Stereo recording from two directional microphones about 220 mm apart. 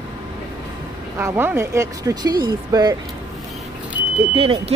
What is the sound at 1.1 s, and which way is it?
Speech, 10° right (ahead or behind).